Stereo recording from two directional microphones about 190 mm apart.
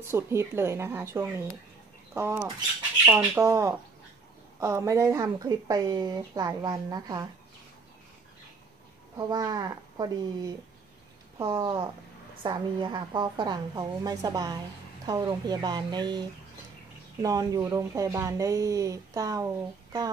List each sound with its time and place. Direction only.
0.0 s speech: 15° right (ahead or behind)
9.1 s speech: 20° right (ahead or behind)
11.5 s speech: 25° right (ahead or behind)